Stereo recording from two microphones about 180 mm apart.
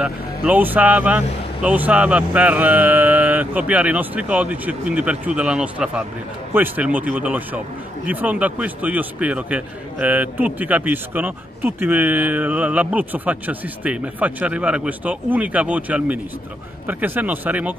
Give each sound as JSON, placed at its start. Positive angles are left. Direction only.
{"t": 0.0, "sound": "a man's voice", "side_deg": -5}